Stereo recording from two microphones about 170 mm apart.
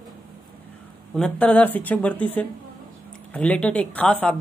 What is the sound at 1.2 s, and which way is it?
Speech, 5° left (ahead or behind).